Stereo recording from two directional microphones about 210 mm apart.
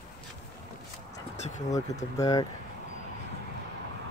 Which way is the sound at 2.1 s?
15° left (ahead or behind).